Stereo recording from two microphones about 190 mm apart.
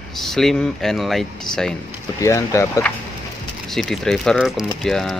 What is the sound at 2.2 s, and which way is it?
Speech, 15° left (ahead or behind).